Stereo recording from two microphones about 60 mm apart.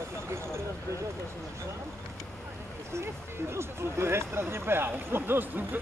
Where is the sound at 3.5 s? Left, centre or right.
Right.